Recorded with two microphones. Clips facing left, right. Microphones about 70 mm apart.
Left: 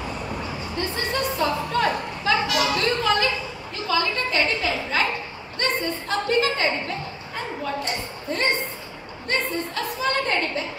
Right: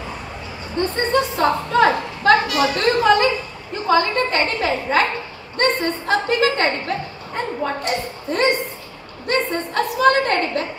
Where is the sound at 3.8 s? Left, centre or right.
Right.